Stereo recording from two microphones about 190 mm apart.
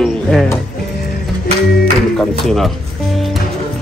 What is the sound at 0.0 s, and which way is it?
Music, centre (ahead or behind).